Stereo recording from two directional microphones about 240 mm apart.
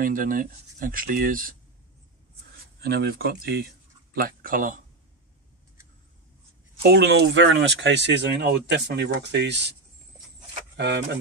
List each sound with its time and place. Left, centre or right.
0.0 s speech: right
2.8 s speech: right
6.8 s speech: right
10.8 s speech: right